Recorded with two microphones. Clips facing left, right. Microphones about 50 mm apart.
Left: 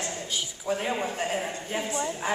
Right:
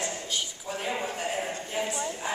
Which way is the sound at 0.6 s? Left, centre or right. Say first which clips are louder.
Left 9 dB; centre.